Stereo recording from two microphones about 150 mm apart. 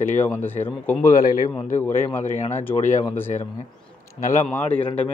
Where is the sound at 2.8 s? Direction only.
55° left (ahead or behind).